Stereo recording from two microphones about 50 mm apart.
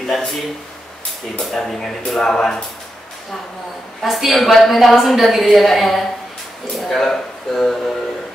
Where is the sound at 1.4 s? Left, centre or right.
Centre.